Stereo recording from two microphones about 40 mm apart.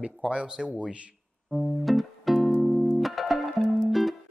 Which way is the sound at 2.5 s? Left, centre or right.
Centre.